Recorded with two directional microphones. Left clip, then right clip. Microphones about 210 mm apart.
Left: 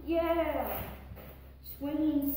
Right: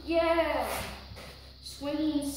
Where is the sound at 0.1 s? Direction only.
Centre (ahead or behind).